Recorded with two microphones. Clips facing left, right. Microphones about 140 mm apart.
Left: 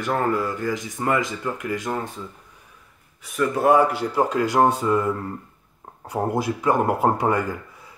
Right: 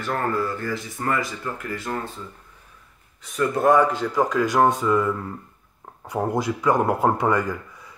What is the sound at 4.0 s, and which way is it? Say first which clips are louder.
Speech: even; 30° left (ahead or behind).